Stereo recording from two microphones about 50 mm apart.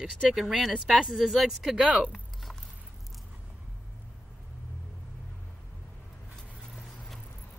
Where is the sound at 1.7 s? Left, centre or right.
Centre.